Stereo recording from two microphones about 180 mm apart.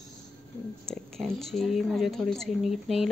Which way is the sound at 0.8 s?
5° left (ahead or behind).